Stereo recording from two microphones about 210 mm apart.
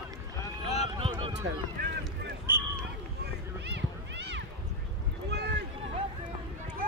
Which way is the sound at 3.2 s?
55° right (ahead or behind).